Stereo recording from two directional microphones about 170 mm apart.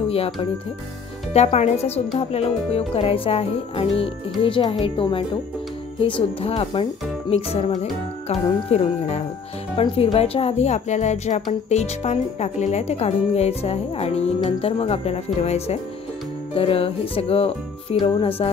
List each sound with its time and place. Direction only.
0.1 s speech: 35° left (ahead or behind)